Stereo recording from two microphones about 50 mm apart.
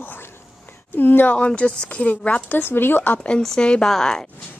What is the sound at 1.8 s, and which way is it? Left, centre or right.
Speech, left.